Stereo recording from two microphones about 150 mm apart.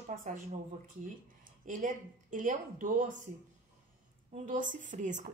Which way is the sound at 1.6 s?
60° right (ahead or behind).